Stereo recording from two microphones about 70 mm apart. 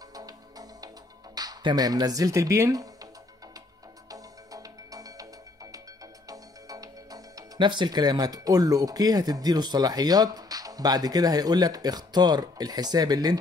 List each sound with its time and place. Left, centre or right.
0.1 s music: right
1.3 s speech: right
4.1 s music: right
6.2 s speech: right